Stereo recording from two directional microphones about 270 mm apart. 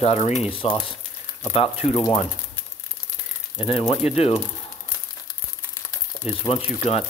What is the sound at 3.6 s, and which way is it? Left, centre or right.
Speech, left.